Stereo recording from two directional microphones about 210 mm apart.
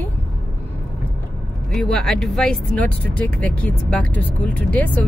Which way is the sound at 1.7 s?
5° left (ahead or behind).